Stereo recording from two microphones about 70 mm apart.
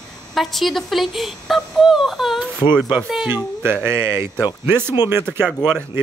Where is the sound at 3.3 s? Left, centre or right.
Right.